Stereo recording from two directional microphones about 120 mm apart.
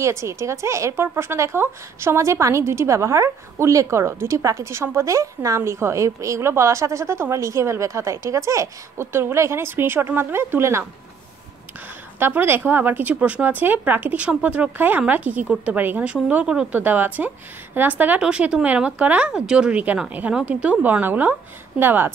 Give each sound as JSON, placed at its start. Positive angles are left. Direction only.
{"t": 0.0, "sound": "a woman's voice", "side_deg": -25}
{"t": 12.2, "sound": "a woman's voice", "side_deg": -15}